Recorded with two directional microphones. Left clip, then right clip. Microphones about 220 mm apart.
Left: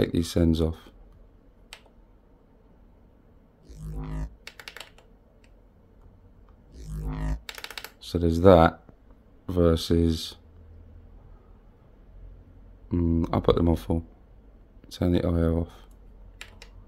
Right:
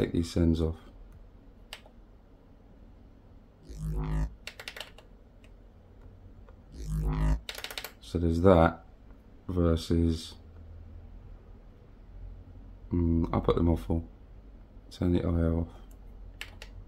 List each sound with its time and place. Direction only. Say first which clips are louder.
0.0 s speech: left 4 dB; 40° left (ahead or behind)
3.6 s music: right 2 dB; 10° right (ahead or behind)
6.7 s music: right 1 dB; 10° right (ahead or behind)
8.0 s speech: left 6 dB; 40° left (ahead or behind)
12.8 s speech: left 3 dB; 40° left (ahead or behind)